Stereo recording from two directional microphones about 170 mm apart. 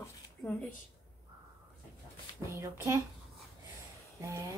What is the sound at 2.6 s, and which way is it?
Speech, 15° right (ahead or behind).